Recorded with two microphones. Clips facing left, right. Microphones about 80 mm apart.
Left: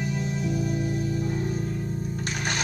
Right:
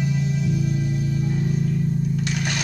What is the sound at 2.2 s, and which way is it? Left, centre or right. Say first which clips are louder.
Music: right 4 dB; left.